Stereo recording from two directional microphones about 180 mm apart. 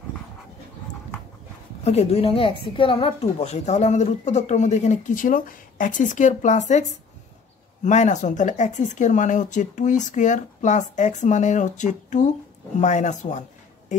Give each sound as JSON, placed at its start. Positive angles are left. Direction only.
{"t": 1.9, "sound": "a woman's voice", "side_deg": 35}